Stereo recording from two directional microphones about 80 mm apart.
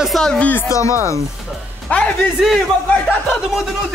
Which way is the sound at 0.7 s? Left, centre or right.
Left.